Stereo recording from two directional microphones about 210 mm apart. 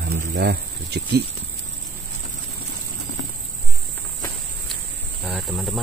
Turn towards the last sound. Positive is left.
turn(degrees=0)  # may be behind; listen again after turning